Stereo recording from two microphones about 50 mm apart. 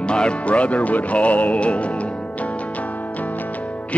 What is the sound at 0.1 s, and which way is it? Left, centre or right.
Music, left.